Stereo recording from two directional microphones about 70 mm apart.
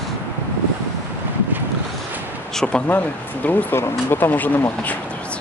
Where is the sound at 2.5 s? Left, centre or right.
Centre.